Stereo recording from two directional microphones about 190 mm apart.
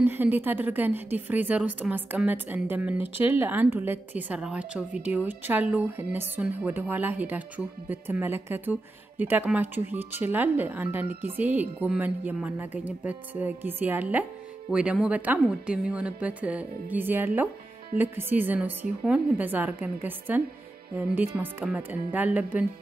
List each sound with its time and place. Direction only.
0.0 s a woman's voice: 10° right (ahead or behind)